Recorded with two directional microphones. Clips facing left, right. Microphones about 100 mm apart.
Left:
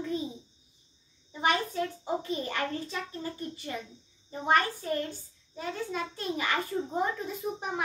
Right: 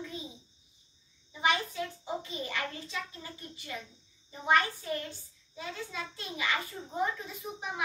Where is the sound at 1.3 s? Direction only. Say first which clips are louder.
Left 2 dB; 45° left (ahead or behind).